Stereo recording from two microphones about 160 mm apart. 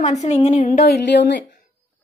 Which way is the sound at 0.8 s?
85° left.